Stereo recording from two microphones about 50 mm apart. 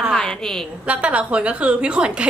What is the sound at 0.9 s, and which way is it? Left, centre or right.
A woman's voice, right.